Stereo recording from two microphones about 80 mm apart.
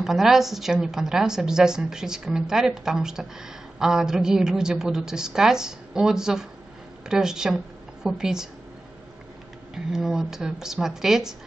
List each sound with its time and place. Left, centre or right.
0.0 s a woman's voice: centre
9.9 s a woman's voice: centre